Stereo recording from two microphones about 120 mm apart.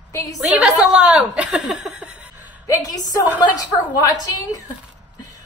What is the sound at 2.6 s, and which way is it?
Speech, 30° left (ahead or behind).